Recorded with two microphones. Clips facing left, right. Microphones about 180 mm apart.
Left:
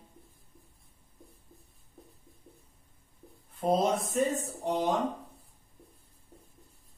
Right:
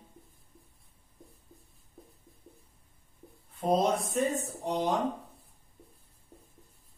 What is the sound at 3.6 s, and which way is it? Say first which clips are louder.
Speech: even; centre (ahead or behind).